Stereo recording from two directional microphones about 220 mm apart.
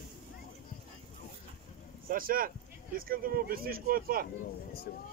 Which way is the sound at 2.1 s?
40° right (ahead or behind).